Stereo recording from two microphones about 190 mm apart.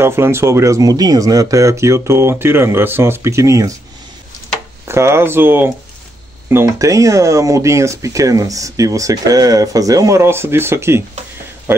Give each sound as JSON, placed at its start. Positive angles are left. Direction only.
{"t": 0.0, "sound": "speech", "side_deg": -15}
{"t": 4.8, "sound": "speech", "side_deg": -15}